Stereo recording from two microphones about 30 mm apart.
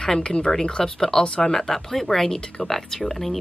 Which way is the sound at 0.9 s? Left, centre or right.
Centre.